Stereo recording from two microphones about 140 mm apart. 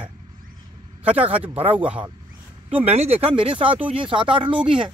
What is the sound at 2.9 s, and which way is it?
Speech, 50° right (ahead or behind).